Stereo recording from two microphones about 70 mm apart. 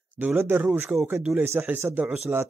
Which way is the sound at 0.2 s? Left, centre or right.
Right.